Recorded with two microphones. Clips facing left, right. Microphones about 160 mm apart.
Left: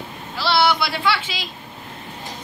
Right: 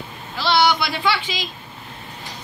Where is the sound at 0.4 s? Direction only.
5° left (ahead or behind).